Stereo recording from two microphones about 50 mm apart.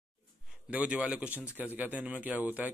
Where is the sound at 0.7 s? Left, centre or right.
Right.